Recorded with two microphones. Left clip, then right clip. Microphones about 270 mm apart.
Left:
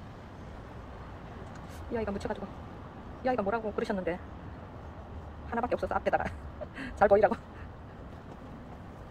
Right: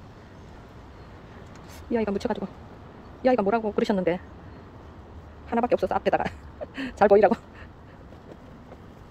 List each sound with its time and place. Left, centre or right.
2.0 s speech: right
5.5 s a man's voice: right